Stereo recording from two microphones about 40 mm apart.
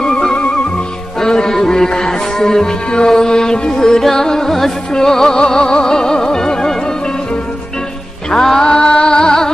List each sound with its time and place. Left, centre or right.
0.0 s music: left
8.3 s music: centre